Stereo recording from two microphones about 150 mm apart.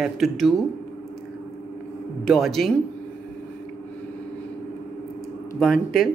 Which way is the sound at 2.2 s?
Centre (ahead or behind).